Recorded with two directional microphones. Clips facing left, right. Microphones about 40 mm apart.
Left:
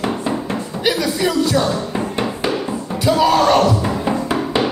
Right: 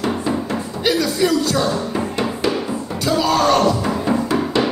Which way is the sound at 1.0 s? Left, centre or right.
Centre.